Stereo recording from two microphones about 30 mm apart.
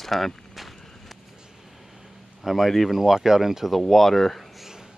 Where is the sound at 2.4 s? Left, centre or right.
Centre.